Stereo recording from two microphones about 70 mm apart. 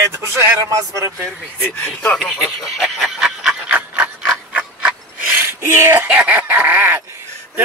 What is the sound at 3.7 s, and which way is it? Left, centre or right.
Filing, centre.